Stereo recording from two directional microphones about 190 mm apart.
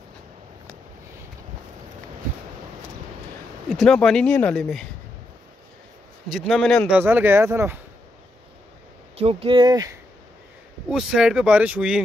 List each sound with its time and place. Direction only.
3.6 s speech: centre (ahead or behind)
6.3 s speech: centre (ahead or behind)
7.0 s speech: 10° right (ahead or behind)
9.2 s speech: 30° right (ahead or behind)
10.9 s speech: 5° right (ahead or behind)